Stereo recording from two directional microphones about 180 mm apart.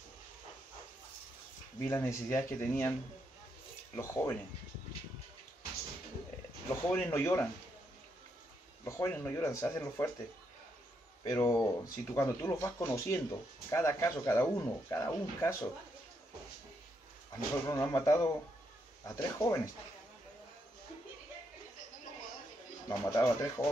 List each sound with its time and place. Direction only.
1.8 s speech: 15° left (ahead or behind)
3.9 s speech: 15° left (ahead or behind)
6.7 s speech: 10° left (ahead or behind)
8.8 s speech: 15° left (ahead or behind)
11.2 s speech: 15° left (ahead or behind)
17.6 s speech: 15° left (ahead or behind)
22.8 s speech: 15° left (ahead or behind)